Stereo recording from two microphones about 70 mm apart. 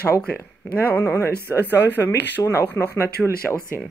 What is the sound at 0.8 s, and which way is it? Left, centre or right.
Speech, left.